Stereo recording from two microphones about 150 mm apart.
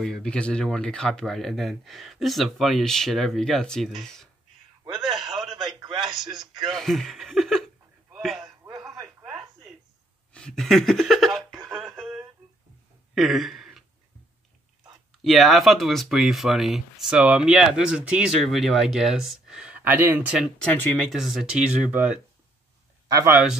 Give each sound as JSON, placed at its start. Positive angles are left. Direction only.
{"t": 0.0, "sound": "speech", "side_deg": 5}
{"t": 5.0, "sound": "a sound", "side_deg": 0}
{"t": 5.9, "sound": "speech", "side_deg": 0}
{"t": 8.2, "sound": "a sound", "side_deg": 0}
{"t": 8.6, "sound": "radio", "side_deg": -20}
{"t": 9.2, "sound": "a sound", "side_deg": -10}
{"t": 10.3, "sound": "speech", "side_deg": 5}
{"t": 11.7, "sound": "music", "side_deg": -5}
{"t": 13.1, "sound": "a sound", "side_deg": 0}
{"t": 15.2, "sound": "speech", "side_deg": 0}
{"t": 20.4, "sound": "speech", "side_deg": 10}
{"t": 21.1, "sound": "speech", "side_deg": 0}
{"t": 23.0, "sound": "speech", "side_deg": -20}